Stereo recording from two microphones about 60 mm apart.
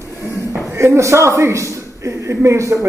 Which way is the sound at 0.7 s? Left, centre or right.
Right.